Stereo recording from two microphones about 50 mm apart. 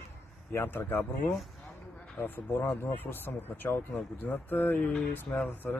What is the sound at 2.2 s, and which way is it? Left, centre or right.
Speech, left.